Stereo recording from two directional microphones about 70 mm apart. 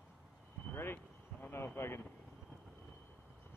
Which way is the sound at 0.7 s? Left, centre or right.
Left.